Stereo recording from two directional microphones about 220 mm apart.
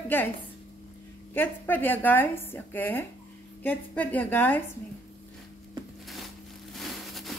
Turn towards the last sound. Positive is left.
turn(degrees=0)  # may be behind; listen again after turning